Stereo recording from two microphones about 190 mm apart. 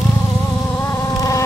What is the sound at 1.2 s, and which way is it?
Insect, 15° left (ahead or behind).